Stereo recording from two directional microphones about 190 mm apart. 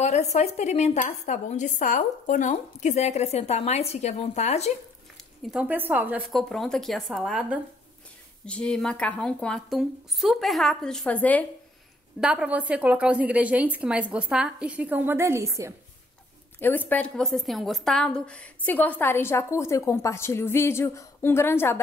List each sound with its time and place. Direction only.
0.0 s a woman's voice: 35° left (ahead or behind)
5.4 s speech: 5° right (ahead or behind)
8.5 s speech: 5° left (ahead or behind)
12.2 s a woman's voice: 5° right (ahead or behind)
16.5 s a woman's voice: 10° left (ahead or behind)